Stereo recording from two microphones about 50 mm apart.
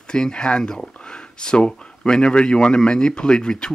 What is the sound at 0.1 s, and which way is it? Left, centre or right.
Speech, centre.